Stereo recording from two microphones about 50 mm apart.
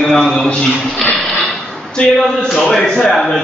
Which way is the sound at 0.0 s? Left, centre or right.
Centre.